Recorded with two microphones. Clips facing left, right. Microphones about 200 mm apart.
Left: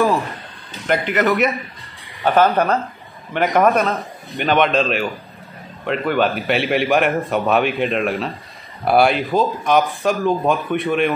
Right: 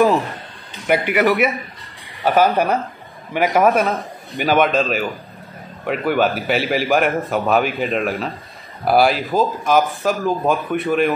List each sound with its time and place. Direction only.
0.8 s a man's voice: 10° right (ahead or behind)